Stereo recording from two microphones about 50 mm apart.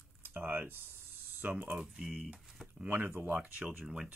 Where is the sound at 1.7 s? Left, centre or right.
Centre.